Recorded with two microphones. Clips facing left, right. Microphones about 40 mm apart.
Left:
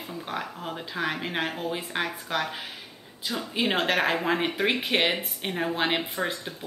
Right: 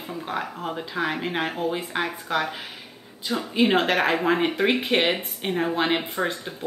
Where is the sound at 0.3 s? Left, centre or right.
Centre.